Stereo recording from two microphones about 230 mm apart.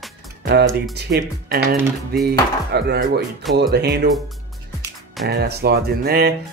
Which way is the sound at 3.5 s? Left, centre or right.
Right.